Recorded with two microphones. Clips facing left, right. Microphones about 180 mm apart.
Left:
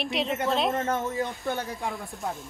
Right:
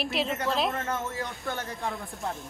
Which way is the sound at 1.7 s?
Centre (ahead or behind).